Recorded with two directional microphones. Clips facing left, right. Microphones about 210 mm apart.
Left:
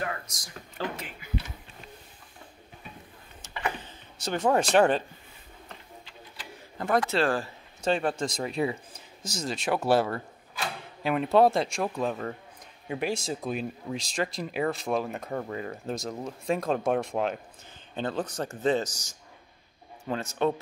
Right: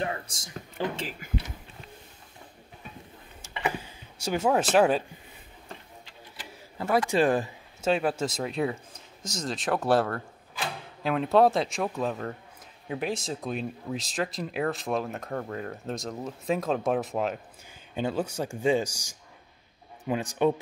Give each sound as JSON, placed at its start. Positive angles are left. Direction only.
{"t": 0.0, "sound": "speech", "side_deg": -30}
{"t": 0.8, "sound": "speech", "side_deg": -15}
{"t": 1.2, "sound": "a sound", "side_deg": -45}
{"t": 3.6, "sound": "speech", "side_deg": -10}
{"t": 6.8, "sound": "speech", "side_deg": -10}
{"t": 7.8, "sound": "speech", "side_deg": -5}